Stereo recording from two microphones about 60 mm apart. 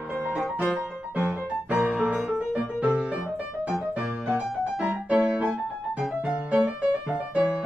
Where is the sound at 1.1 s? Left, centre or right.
Right.